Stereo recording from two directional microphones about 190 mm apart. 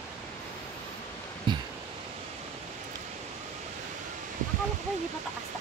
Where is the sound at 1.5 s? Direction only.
25° right (ahead or behind).